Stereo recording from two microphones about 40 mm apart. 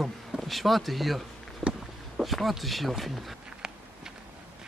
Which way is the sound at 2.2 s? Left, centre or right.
Centre.